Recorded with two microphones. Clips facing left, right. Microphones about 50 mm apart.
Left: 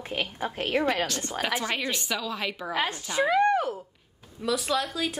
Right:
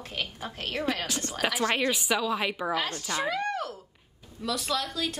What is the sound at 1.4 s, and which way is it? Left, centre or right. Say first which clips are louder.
A woman's voice: right 3 dB; centre.